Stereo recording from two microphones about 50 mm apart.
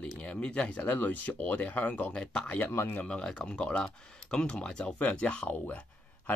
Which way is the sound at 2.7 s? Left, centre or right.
Left.